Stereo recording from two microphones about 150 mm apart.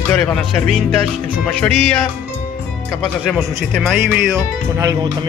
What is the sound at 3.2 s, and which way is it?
Speech, centre (ahead or behind).